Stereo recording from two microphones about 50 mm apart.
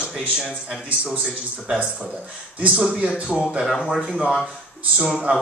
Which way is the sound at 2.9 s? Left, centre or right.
Right.